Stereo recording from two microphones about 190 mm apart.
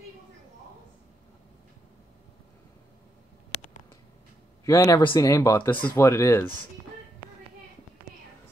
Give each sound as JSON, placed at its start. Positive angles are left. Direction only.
{"t": 4.6, "sound": "speech", "side_deg": 15}